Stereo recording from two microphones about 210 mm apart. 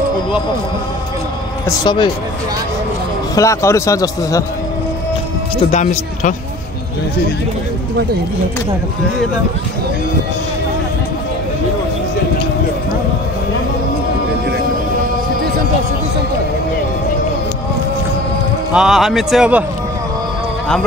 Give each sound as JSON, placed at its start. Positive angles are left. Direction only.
{"t": 1.7, "sound": "speech", "side_deg": 20}
{"t": 3.3, "sound": "a man's voice", "side_deg": 15}
{"t": 5.7, "sound": "speech", "side_deg": 35}
{"t": 18.7, "sound": "a man's voice", "side_deg": 0}